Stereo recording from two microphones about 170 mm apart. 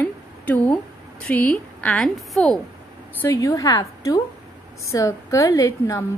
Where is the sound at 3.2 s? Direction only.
20° left (ahead or behind).